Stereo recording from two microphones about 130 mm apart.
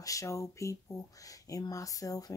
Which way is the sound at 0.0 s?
25° left (ahead or behind).